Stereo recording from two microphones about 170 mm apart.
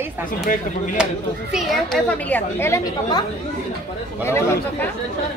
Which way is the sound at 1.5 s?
Centre (ahead or behind).